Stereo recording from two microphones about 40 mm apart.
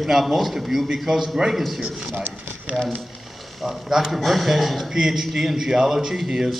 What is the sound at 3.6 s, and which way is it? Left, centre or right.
Speech, centre.